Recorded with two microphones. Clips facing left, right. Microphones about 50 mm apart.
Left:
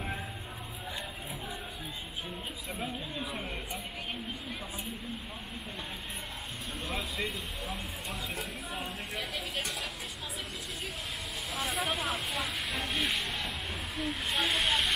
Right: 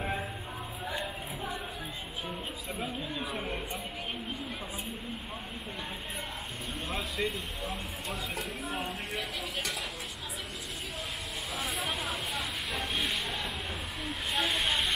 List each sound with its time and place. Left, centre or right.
0.8 s a sound: right
3.2 s speech: centre
6.9 s speech: centre
11.5 s speech: centre